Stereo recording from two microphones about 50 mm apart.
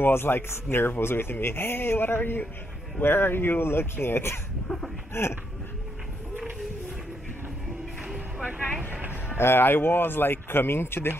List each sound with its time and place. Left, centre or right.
0.0 s speech: left
9.4 s speech: left